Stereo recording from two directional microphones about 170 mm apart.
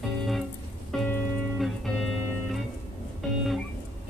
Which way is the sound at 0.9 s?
Centre (ahead or behind).